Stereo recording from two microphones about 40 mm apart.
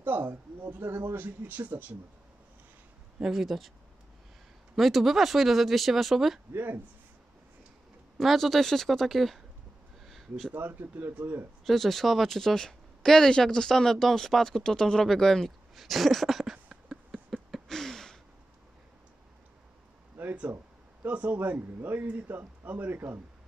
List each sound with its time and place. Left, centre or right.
0.0 s speech: right
3.2 s speech: centre
4.7 s speech: centre
6.5 s speech: right
8.2 s speech: centre
10.0 s a sound: centre
10.5 s speech: right
11.6 s speech: centre
15.7 s speech: centre
17.6 s gasp: centre
20.2 s a sound: right
21.0 s speech: right
21.4 s speech: right